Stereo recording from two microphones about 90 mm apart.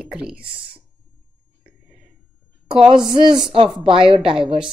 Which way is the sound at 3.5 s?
75° right (ahead or behind).